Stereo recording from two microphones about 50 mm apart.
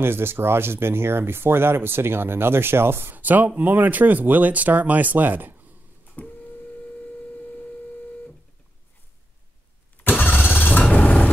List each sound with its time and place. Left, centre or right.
0.0 s speech: right
3.2 s speech: right
6.2 s printer: left
10.0 s vehicle: left